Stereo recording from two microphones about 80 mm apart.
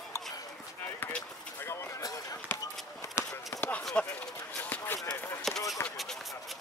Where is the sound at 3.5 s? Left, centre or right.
Left.